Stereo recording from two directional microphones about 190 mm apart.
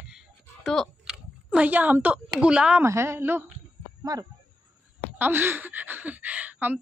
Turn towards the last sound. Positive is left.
turn(degrees=-10)  # may be behind; listen again after turning